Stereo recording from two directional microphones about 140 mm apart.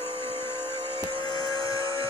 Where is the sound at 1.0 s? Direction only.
35° right (ahead or behind).